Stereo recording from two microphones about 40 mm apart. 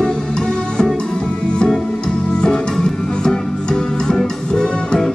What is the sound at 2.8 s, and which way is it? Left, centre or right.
Music, centre.